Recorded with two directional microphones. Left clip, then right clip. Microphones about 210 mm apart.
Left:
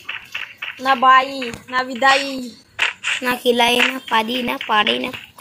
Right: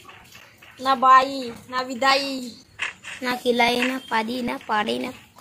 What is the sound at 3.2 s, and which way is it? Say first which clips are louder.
Speech: left 3 dB; centre (ahead or behind).